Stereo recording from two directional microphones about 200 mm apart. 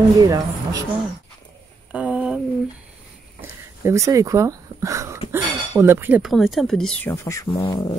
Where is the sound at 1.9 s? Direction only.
5° right (ahead or behind).